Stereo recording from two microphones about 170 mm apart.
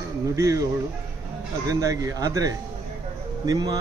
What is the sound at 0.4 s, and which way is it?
Speech, 20° right (ahead or behind).